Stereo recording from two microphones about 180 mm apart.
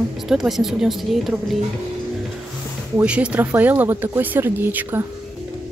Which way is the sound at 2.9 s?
5° right (ahead or behind).